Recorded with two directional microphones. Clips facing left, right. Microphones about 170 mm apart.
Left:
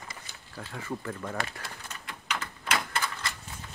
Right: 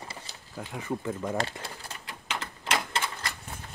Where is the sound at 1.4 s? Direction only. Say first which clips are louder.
Right 3 dB; 30° right (ahead or behind).